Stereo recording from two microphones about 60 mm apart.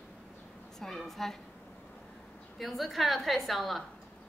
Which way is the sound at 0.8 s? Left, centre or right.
Centre.